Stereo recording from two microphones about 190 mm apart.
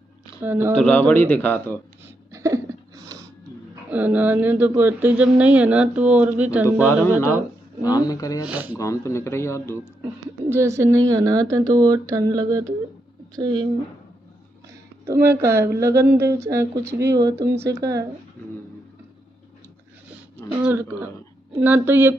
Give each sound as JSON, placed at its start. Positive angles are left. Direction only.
{"t": 0.4, "sound": "speech", "side_deg": -10}
{"t": 0.7, "sound": "speech", "side_deg": 10}
{"t": 2.0, "sound": "a sound", "side_deg": -15}
{"t": 3.9, "sound": "speech", "side_deg": -10}
{"t": 7.8, "sound": "speech", "side_deg": 20}
{"t": 8.5, "sound": "speech", "side_deg": -10}
{"t": 8.7, "sound": "speech", "side_deg": 15}
{"t": 10.5, "sound": "a woman's voice", "side_deg": -15}
{"t": 14.7, "sound": "speech", "side_deg": -10}
{"t": 18.4, "sound": "a sound", "side_deg": 10}
{"t": 20.6, "sound": "speech", "side_deg": -10}